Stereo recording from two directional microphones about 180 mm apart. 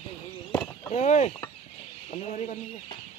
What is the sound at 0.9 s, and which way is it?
Speech, 40° left (ahead or behind).